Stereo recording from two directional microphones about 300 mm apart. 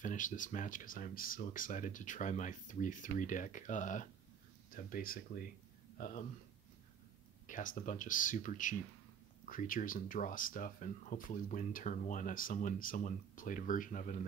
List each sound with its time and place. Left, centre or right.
0.0 s speech: left
7.4 s speech: left